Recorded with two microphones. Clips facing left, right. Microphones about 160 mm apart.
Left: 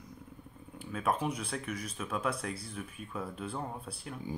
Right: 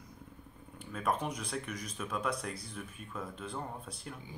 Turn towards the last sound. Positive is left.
turn(degrees=5)  # may be behind; listen again after turning